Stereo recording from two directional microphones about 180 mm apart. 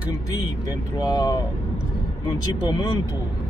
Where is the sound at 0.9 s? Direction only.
20° left (ahead or behind).